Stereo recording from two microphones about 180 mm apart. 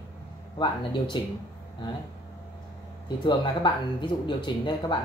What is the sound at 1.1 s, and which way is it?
Speech, 25° left (ahead or behind).